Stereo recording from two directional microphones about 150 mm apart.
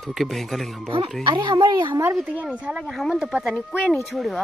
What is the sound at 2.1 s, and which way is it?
Speech, 5° right (ahead or behind).